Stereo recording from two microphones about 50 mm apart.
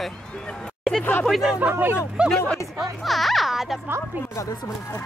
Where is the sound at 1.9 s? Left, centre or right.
Centre.